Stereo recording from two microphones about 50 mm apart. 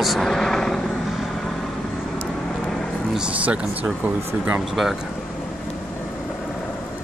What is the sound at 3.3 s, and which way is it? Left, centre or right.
Speech, right.